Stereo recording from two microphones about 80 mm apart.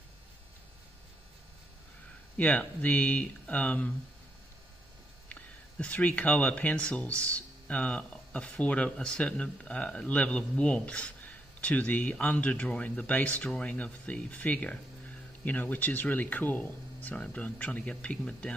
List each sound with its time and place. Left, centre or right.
2.3 s speech: centre
5.3 s speech: centre